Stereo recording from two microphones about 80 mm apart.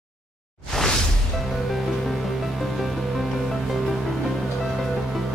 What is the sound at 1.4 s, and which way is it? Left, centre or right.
Music, centre.